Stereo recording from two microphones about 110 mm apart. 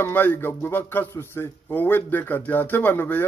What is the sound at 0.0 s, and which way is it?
Speech, 15° left (ahead or behind).